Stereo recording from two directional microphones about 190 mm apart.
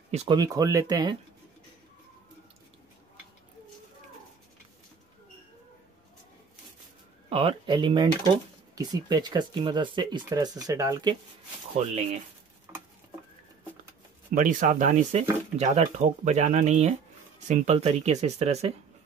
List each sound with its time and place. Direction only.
0.3 s speech: 20° right (ahead or behind)
7.2 s speech: 30° right (ahead or behind)
11.8 s speech: 35° right (ahead or behind)
14.3 s speech: 45° right (ahead or behind)